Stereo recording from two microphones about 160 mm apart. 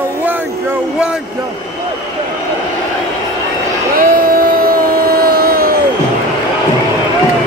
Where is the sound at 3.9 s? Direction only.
60° right (ahead or behind).